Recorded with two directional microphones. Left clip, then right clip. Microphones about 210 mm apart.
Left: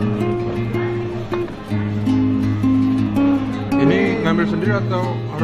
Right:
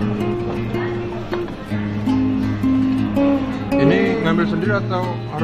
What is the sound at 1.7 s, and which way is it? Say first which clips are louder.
Music: even; centre (ahead or behind).